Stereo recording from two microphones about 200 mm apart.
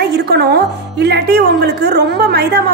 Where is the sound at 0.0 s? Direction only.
55° right (ahead or behind).